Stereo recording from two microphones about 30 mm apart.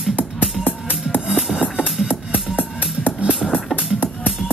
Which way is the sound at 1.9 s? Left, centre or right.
Right.